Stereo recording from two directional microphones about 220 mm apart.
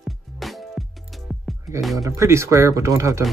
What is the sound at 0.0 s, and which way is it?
Music, centre (ahead or behind).